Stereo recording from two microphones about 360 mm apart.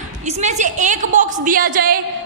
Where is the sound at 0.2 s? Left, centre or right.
Centre.